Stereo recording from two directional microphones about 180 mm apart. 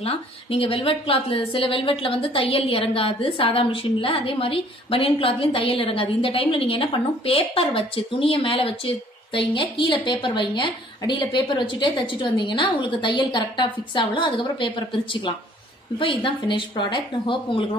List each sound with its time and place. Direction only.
0.0 s a woman's voice: 35° left (ahead or behind)